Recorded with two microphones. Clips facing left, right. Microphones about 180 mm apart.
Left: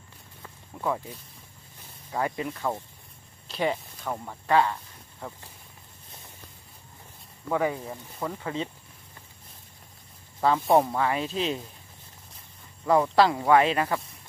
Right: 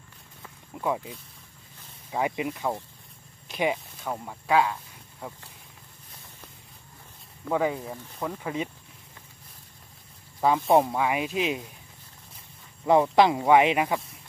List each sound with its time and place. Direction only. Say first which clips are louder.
0.7 s speech: right 1 dB; 10° right (ahead or behind)
7.5 s speech: right 1 dB; 10° right (ahead or behind)
10.6 s speech: even; centre (ahead or behind)
12.8 s speech: right 1 dB; 20° right (ahead or behind)